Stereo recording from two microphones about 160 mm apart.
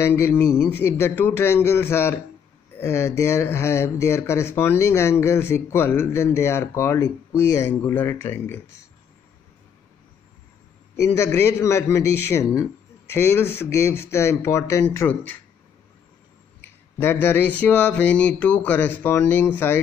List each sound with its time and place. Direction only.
0.1 s speech: 10° left (ahead or behind)
11.0 s speech: 20° left (ahead or behind)
16.6 s speech: 15° left (ahead or behind)